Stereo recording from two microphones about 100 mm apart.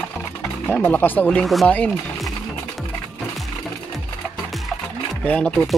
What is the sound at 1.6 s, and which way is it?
Speech, 10° left (ahead or behind).